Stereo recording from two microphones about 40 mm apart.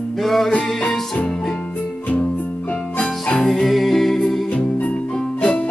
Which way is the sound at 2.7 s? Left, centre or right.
Left.